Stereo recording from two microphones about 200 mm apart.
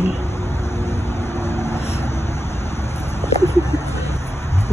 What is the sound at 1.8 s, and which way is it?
Vehicle, 30° left (ahead or behind).